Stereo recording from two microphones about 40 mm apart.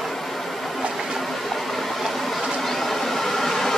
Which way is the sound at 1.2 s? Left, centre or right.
Centre.